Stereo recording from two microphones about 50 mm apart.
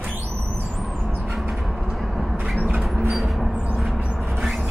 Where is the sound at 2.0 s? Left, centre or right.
Centre.